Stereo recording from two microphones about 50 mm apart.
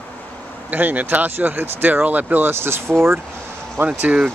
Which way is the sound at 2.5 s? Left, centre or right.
Right.